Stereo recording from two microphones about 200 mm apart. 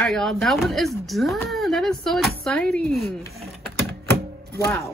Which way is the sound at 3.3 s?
Centre (ahead or behind).